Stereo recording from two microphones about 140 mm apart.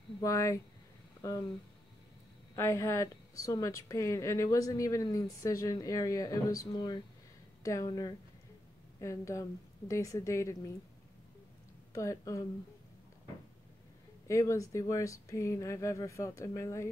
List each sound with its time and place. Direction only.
0.2 s a woman's voice: 25° left (ahead or behind)
2.5 s a woman's voice: 20° left (ahead or behind)
11.9 s a woman's voice: 20° left (ahead or behind)
14.2 s a woman's voice: 20° left (ahead or behind)